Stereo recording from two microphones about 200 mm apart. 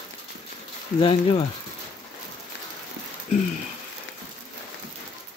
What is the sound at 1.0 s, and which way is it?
Speech, 25° left (ahead or behind).